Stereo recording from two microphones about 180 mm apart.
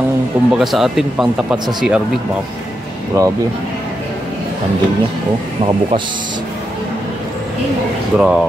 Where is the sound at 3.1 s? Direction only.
20° right (ahead or behind).